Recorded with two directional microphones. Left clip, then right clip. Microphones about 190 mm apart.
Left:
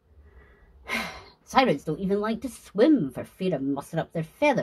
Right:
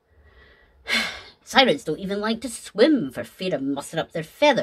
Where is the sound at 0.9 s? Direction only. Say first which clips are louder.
Right 7 dB; 50° right (ahead or behind).